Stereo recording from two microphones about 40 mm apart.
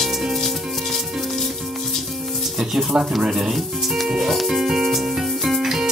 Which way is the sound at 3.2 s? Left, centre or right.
Centre.